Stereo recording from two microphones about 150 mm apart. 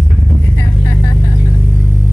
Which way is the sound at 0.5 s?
20° left (ahead or behind).